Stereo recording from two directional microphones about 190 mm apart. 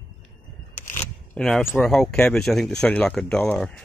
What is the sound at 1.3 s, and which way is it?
Speech, centre (ahead or behind).